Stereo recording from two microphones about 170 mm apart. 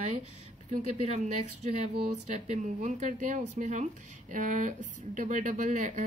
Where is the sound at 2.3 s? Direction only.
45° right (ahead or behind).